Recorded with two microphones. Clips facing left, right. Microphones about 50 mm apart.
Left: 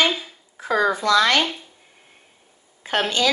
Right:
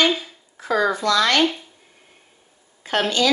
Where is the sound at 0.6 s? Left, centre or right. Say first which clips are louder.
Even; centre.